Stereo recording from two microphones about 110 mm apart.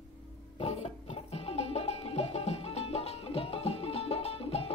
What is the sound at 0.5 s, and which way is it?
Music, 70° left (ahead or behind).